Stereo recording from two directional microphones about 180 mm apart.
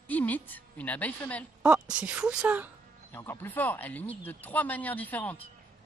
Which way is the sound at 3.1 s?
10° left (ahead or behind).